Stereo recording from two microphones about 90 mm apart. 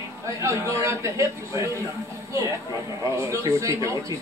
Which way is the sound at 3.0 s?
30° right (ahead or behind).